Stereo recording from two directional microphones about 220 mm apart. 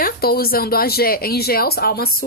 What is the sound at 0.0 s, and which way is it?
Speech, 45° left (ahead or behind).